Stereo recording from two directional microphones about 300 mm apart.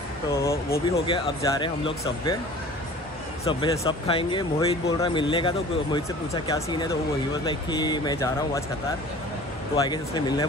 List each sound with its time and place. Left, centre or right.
0.3 s speech: centre
3.4 s speech: centre
9.8 s speech: centre